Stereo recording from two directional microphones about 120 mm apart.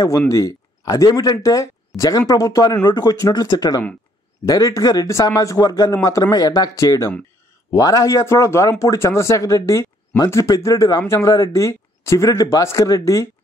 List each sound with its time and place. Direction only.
0.3 s speech: 30° left (ahead or behind)